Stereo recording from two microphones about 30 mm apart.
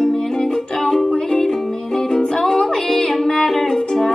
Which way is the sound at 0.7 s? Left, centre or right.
Centre.